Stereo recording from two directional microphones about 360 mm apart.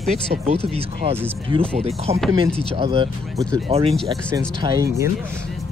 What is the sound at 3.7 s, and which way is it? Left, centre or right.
Speech, centre.